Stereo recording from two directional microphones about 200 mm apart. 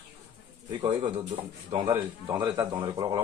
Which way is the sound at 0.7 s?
25° right (ahead or behind).